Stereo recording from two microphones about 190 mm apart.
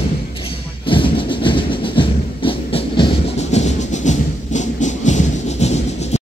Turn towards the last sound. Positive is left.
turn(degrees=35)  # may be behind; listen again after turning